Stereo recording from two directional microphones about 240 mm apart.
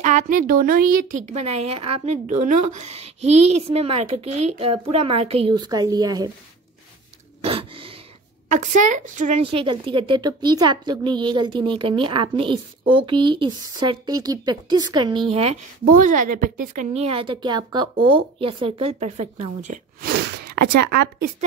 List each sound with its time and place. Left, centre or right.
0.0 s a woman's voice: right
7.4 s a sound: right
8.5 s a woman's voice: right